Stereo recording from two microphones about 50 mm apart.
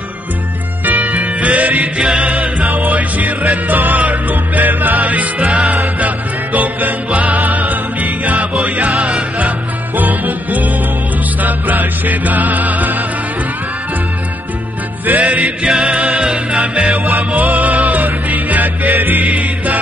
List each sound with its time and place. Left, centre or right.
0.8 s music: right
9.9 s music: right
15.0 s music: right
16.9 s music: right